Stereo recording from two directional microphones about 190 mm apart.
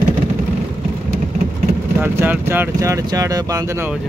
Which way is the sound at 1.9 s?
10° right (ahead or behind).